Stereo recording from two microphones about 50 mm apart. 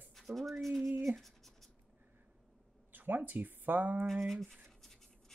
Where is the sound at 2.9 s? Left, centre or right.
Right.